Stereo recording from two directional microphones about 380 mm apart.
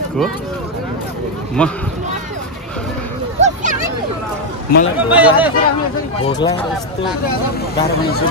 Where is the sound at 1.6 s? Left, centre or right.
Centre.